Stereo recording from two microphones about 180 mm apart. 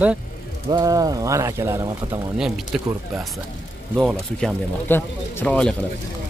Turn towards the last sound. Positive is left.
turn(degrees=5)  # may be behind; listen again after turning